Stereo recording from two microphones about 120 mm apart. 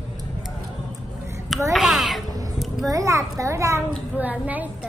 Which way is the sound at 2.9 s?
25° right (ahead or behind).